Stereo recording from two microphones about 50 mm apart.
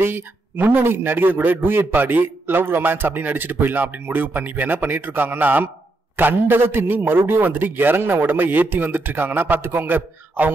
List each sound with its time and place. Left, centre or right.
0.0 s a man's voice: right